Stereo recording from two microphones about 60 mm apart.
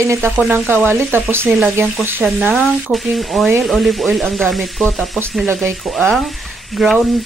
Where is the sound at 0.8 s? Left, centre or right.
Right.